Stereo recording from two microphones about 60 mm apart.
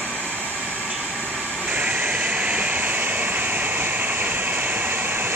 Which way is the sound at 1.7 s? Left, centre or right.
Right.